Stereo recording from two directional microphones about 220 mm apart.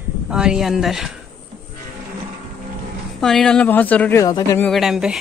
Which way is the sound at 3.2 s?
Centre (ahead or behind).